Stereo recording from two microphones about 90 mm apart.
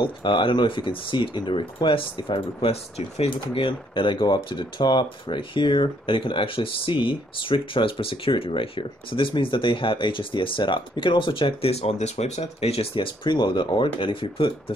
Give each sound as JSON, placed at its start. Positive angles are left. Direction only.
{"t": 0.0, "sound": "speech", "side_deg": 70}